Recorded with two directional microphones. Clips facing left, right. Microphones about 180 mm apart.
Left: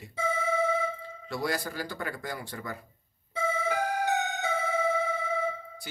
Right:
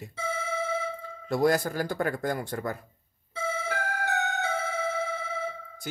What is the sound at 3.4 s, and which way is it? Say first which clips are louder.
Music: left 3 dB; 15° left (ahead or behind).